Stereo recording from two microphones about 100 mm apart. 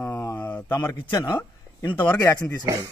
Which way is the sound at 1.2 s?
50° left (ahead or behind).